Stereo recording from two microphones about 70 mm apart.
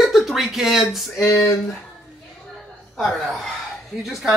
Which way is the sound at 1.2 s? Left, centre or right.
Left.